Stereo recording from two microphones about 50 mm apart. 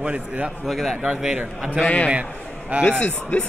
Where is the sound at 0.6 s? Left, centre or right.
Centre.